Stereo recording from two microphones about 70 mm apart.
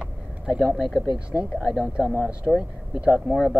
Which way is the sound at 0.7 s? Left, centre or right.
Centre.